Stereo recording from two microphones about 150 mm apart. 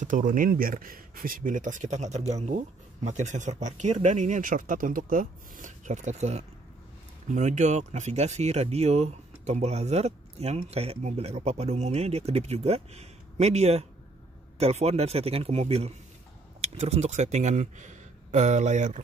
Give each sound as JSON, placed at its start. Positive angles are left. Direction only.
{"t": 0.0, "sound": "speech", "side_deg": -60}